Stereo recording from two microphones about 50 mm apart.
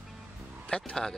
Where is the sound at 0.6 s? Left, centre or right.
Left.